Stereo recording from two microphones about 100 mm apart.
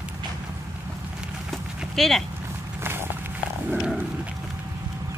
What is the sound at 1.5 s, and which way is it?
Clip-clop, centre (ahead or behind).